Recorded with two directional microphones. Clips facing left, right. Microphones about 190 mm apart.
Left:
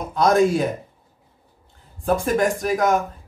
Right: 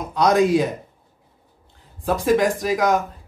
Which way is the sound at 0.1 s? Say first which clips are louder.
Even; centre (ahead or behind).